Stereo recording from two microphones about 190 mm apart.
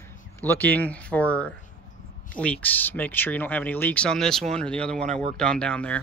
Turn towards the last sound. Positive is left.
turn(degrees=5)  # may be behind; listen again after turning